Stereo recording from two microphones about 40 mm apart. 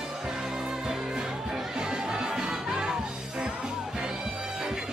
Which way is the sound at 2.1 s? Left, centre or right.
Centre.